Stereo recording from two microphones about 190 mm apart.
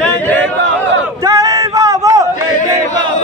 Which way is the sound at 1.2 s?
20° right (ahead or behind).